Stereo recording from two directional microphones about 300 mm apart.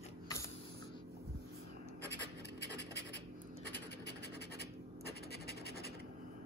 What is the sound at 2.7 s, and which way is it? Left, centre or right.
Scratch, left.